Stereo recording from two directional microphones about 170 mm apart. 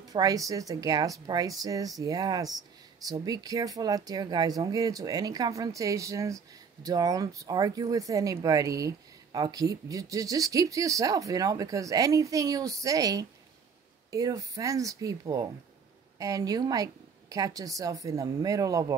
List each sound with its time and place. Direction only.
0.1 s speech: 20° right (ahead or behind)